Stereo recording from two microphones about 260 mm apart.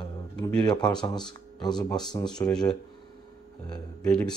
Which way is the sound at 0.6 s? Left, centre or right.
Centre.